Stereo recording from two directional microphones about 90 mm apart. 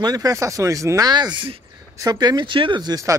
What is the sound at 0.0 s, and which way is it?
Speech, 45° right (ahead or behind).